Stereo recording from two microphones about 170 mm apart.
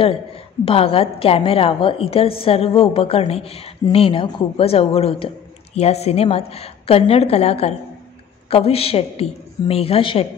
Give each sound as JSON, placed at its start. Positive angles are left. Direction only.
{"t": 0.7, "sound": "a woman's voice", "side_deg": 35}